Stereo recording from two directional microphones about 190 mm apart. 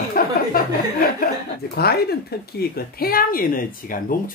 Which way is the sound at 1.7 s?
55° left (ahead or behind).